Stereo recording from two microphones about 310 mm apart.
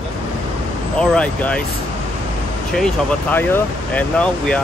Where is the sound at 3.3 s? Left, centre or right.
Centre.